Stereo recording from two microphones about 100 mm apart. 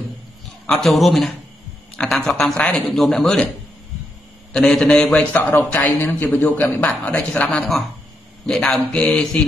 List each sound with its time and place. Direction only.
0.7 s a man's voice: 5° left (ahead or behind)
4.5 s a man's voice: 5° left (ahead or behind)